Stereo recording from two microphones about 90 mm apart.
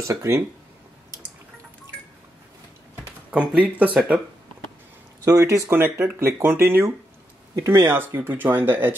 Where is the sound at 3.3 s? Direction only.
15° right (ahead or behind).